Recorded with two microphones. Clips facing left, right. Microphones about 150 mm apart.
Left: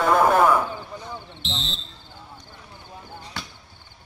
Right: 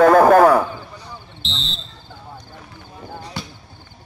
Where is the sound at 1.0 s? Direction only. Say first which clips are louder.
Left 1 dB; 20° left (ahead or behind).